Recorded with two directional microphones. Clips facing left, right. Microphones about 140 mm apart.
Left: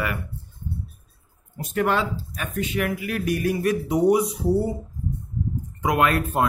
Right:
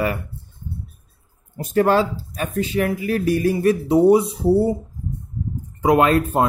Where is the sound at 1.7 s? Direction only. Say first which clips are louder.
Right 6 dB; 35° right (ahead or behind).